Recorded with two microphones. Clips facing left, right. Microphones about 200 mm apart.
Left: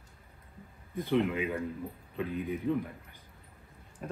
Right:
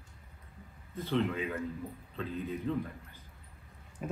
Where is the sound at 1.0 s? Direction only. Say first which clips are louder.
Left 3 dB; 15° left (ahead or behind).